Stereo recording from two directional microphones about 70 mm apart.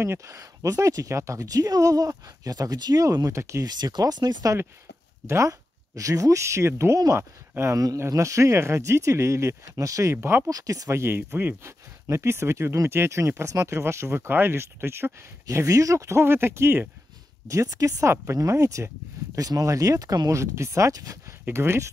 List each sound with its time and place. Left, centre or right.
0.0 s speech: right
3.6 s speech: right
5.2 s speech: right
7.7 s speech: right
10.1 s speech: right
10.5 s speech: right
10.9 s speech: right
15.4 s speech: right
17.5 s speech: right
18.0 s speech: right
19.3 s speech: right
21.5 s speech: right